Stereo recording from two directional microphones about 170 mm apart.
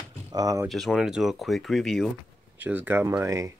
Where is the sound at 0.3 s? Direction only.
20° right (ahead or behind).